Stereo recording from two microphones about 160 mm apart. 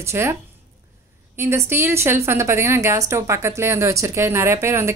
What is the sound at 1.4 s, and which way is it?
A woman's voice, 15° right (ahead or behind).